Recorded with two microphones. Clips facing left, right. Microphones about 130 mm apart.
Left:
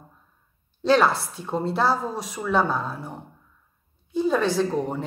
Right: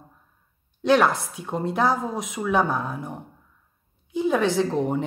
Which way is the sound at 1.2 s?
15° right (ahead or behind).